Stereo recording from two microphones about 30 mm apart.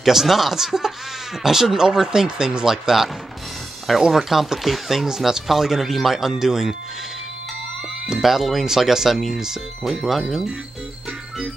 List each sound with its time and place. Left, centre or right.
0.0 s speech: centre
5.0 s speech: centre
5.8 s speech: centre
8.2 s speech: centre
9.8 s speech: centre